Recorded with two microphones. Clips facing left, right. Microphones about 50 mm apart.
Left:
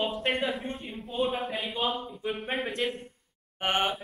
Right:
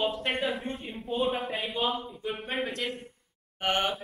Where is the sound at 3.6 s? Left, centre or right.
Left.